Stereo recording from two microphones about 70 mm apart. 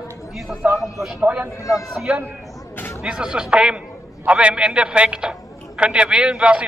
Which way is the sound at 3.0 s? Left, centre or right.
Centre.